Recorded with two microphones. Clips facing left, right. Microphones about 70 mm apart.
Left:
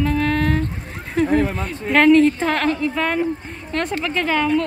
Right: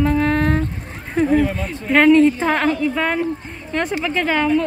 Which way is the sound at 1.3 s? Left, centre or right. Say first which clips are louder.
Right 3 dB; left.